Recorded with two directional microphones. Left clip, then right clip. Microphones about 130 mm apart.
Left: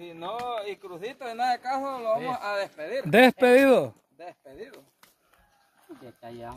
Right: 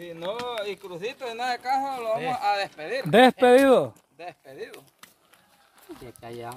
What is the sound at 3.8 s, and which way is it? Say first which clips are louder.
Speech: right 2 dB; 15° left (ahead or behind).